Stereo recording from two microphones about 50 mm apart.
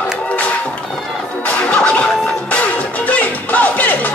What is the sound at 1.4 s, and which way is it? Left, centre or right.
Music, left.